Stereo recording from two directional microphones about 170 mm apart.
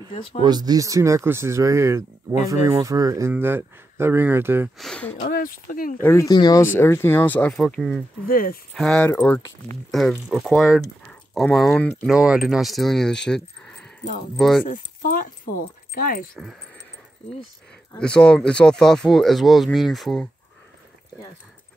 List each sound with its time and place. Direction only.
0.4 s speech: 25° right (ahead or behind)
4.7 s speech: 5° left (ahead or behind)
5.2 s speech: 55° left (ahead or behind)
5.9 s speech: 15° left (ahead or behind)
8.3 s speech: 55° left (ahead or behind)
8.7 s speech: 5° left (ahead or behind)
9.8 s speech: centre (ahead or behind)
12.1 s speech: 5° right (ahead or behind)
14.7 s speech: 55° left (ahead or behind)
17.9 s speech: 5° left (ahead or behind)